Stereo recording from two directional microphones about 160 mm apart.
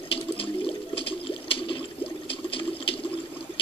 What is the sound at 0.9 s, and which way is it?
Water, 35° left (ahead or behind).